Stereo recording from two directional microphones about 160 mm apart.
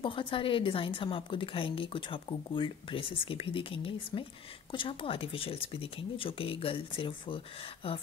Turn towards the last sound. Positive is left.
turn(degrees=35)  # may be behind; listen again after turning